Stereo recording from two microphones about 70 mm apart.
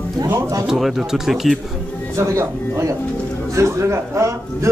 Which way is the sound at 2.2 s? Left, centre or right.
Right.